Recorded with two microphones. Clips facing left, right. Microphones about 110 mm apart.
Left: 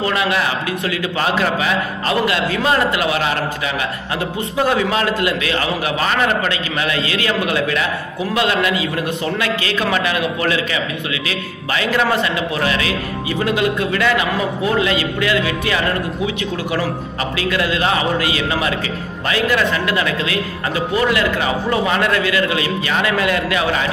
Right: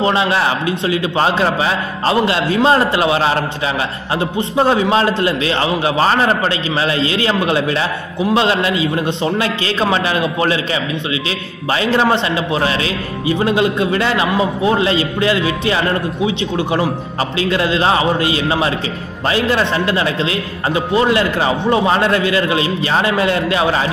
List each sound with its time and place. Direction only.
0.0 s a man's voice: 30° right (ahead or behind)